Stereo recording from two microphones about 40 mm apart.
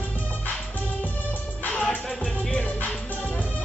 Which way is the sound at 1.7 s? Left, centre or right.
Left.